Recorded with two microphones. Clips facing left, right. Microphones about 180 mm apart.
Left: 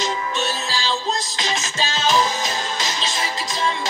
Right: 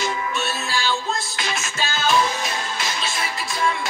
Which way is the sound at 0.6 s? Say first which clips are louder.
Even; 20° left (ahead or behind).